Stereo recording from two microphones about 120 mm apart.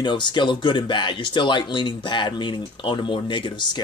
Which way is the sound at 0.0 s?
40° left (ahead or behind).